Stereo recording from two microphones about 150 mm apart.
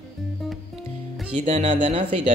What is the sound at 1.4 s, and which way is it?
Speech, 40° right (ahead or behind).